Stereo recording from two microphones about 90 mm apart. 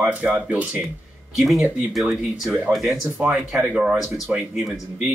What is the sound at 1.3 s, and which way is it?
Speech, 5° right (ahead or behind).